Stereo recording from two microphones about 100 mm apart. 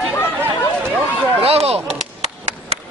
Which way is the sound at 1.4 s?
90° right.